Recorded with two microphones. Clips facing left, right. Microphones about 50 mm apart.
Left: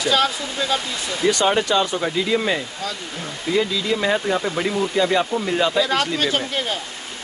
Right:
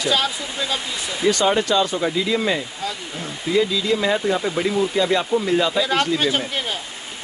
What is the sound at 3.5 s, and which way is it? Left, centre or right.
Speech, centre.